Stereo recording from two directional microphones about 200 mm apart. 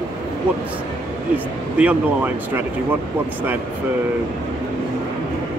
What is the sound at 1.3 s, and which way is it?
Speech, 5° right (ahead or behind).